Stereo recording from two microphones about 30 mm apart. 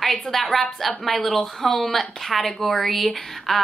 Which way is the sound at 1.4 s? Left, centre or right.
Left.